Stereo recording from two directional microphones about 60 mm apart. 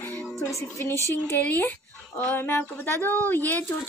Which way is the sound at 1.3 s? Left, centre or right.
Left.